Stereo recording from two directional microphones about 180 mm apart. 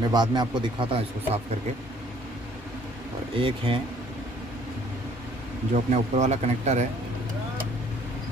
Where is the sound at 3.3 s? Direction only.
30° right (ahead or behind).